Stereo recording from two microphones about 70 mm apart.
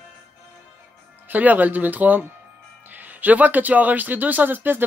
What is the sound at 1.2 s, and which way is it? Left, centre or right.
Speech, right.